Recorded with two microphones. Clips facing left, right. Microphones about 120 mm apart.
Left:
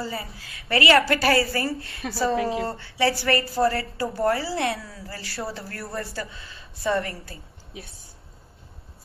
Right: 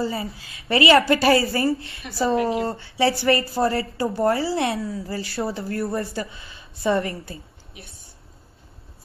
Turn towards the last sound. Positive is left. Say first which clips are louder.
# right 3 dB
turn(degrees=-25)  # may be behind; listen again after turning